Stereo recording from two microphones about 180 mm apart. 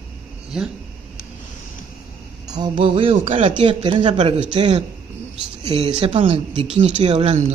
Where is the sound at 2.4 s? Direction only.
20° right (ahead or behind); by 3.5 s 40° right (ahead or behind).